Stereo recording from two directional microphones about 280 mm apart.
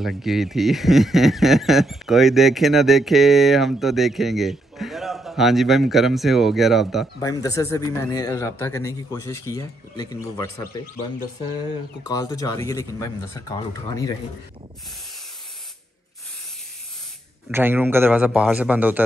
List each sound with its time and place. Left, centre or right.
0.0 s speech: centre
7.2 s a man's voice: centre
12.0 s a man's voice: centre
17.5 s a man's voice: centre